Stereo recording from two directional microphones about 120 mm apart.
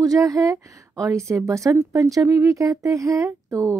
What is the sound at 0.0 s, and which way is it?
A woman's voice, 30° right (ahead or behind).